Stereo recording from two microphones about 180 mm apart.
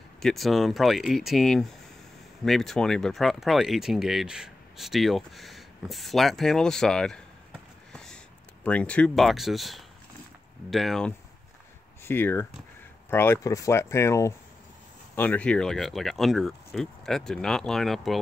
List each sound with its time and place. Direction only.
0.2 s speech: centre (ahead or behind)
7.9 s a sound: 5° left (ahead or behind)
8.6 s speech: 5° left (ahead or behind)